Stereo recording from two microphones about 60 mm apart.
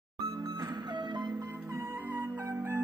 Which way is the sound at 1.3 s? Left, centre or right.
Right.